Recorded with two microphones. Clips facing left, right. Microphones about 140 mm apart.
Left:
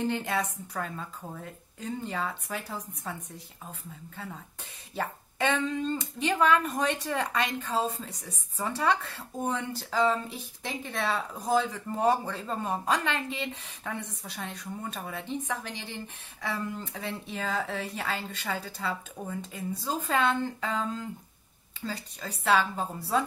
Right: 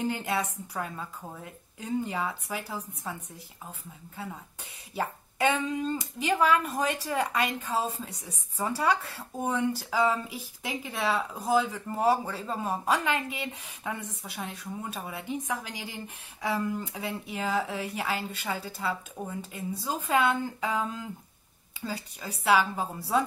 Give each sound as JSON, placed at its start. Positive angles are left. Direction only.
{"t": 0.1, "sound": "speech", "side_deg": -5}
{"t": 4.9, "sound": "speech", "side_deg": -10}